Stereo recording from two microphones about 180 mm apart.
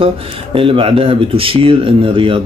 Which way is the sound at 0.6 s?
30° right (ahead or behind).